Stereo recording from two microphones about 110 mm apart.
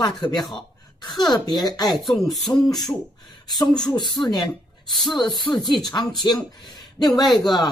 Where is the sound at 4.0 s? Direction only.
40° left (ahead or behind).